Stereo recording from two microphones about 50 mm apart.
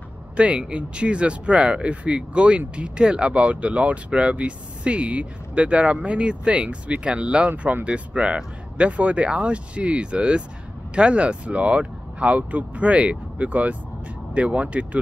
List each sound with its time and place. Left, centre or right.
0.4 s speech: right